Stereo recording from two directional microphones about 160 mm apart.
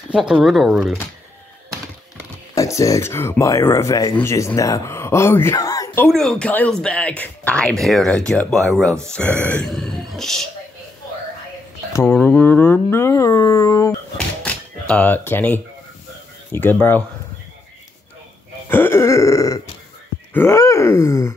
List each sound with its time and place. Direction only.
0.1 s speech: 5° right (ahead or behind)
2.5 s speech: 20° left (ahead or behind)
6.0 s speech: 5° left (ahead or behind)
11.9 s speech: 15° left (ahead or behind)
14.1 s a sound: 10° left (ahead or behind)
16.5 s speech: 10° left (ahead or behind)
18.7 s speech: 15° left (ahead or behind)